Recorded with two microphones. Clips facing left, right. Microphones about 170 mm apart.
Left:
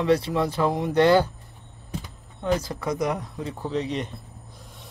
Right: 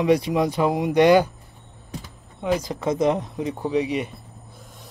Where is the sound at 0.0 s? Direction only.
15° right (ahead or behind).